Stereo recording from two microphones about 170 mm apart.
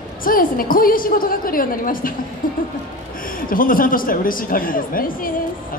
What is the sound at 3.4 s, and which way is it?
A woman's voice, 55° left (ahead or behind).